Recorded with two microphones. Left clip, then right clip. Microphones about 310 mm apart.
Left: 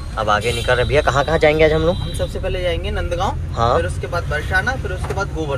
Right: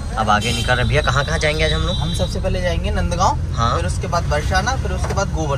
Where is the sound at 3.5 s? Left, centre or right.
Centre.